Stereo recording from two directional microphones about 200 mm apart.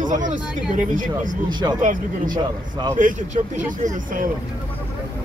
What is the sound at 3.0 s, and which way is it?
Speech, 40° right (ahead or behind).